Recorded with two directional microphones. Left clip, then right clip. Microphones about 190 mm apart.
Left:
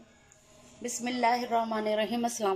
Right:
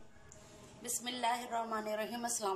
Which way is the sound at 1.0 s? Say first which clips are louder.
Left 9 dB; 40° left (ahead or behind).